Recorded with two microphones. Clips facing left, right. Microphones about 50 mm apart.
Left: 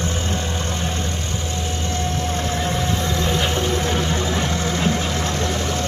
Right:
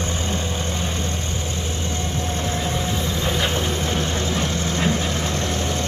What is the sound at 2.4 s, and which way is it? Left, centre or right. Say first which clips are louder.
Vehicle: left 2 dB; centre.